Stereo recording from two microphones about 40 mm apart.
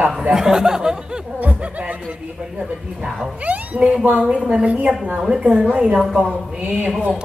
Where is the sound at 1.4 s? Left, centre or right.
Right.